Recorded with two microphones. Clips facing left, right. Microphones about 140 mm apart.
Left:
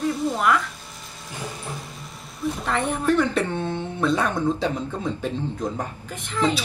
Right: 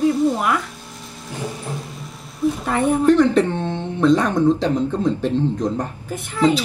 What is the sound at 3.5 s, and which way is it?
Speech, 20° right (ahead or behind).